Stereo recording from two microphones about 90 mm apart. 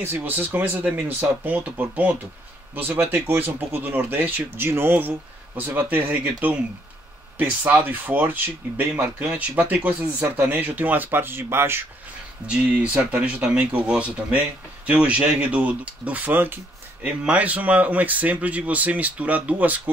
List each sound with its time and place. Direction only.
0.0 s speech: 20° right (ahead or behind)
12.4 s speech: 15° right (ahead or behind)